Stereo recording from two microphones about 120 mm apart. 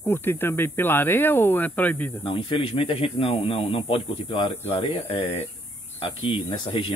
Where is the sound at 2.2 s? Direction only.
45° left (ahead or behind).